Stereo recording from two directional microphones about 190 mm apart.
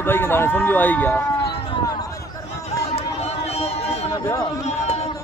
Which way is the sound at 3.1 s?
35° left (ahead or behind).